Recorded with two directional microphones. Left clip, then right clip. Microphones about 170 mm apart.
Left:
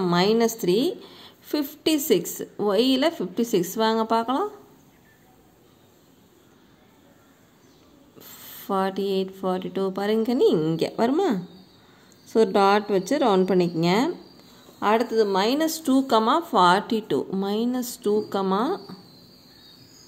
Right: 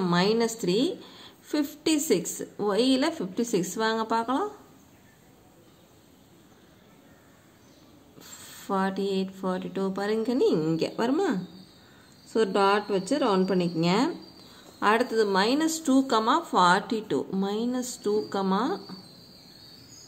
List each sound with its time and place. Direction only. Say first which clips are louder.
0.0 s a woman's voice: left 4 dB; 20° left (ahead or behind)
8.2 s speech: left 1 dB; 20° left (ahead or behind)